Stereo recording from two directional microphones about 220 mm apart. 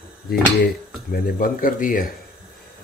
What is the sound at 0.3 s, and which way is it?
Speech, 45° left (ahead or behind).